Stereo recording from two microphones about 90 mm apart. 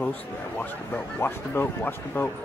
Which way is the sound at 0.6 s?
20° left (ahead or behind).